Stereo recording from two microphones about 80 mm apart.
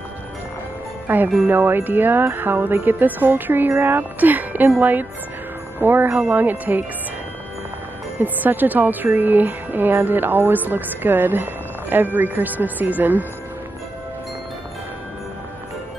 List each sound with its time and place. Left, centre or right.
1.0 s speech: right
8.2 s speech: right